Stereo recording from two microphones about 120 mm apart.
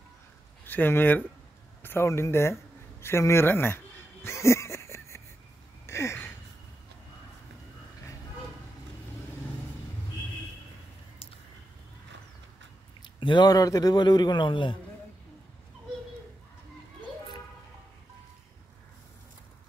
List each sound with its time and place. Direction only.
0.7 s speech: 15° left (ahead or behind)
3.0 s a sound: 20° left (ahead or behind)
13.2 s a man's voice: 40° left (ahead or behind)